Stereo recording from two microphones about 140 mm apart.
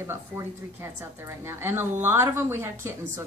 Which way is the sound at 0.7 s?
20° right (ahead or behind).